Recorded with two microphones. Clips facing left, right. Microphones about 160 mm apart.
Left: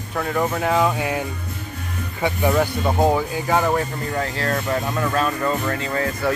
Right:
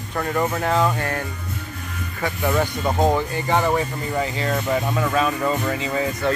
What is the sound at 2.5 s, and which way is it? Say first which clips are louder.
Speech: left 2 dB; 5° left (ahead or behind).